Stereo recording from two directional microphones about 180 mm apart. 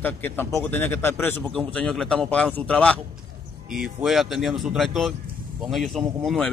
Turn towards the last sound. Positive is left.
turn(degrees=0)  # may be behind; listen again after turning